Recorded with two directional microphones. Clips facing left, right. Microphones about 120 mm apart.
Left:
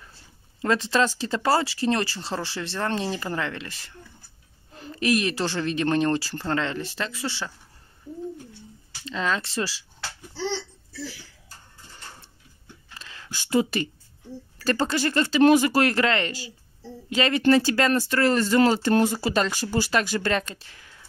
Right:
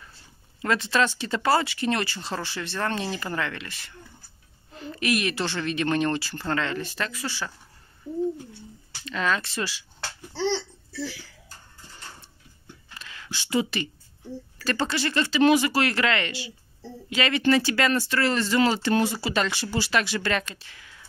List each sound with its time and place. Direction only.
0.6 s speech: 30° left (ahead or behind)
9.0 s speech: 25° left (ahead or behind)
13.0 s a sound: 30° left (ahead or behind)
13.3 s speech: 45° left (ahead or behind)